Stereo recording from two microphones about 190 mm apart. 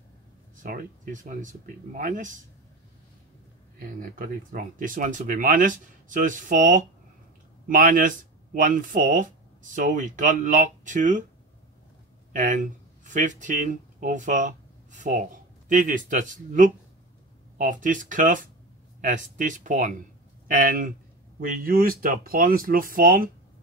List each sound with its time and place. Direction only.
0.6 s speech: 45° right (ahead or behind)
4.0 s speech: 45° right (ahead or behind)
12.3 s speech: 40° right (ahead or behind)